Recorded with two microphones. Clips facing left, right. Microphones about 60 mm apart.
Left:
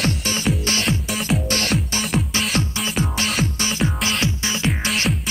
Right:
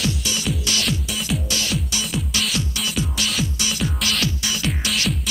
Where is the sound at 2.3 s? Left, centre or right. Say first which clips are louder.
Left 2 dB; left.